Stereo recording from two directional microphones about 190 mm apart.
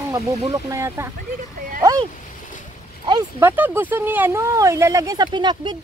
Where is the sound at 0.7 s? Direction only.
15° right (ahead or behind).